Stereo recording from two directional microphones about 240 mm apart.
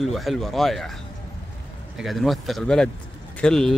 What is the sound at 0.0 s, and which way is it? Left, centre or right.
Speech, centre.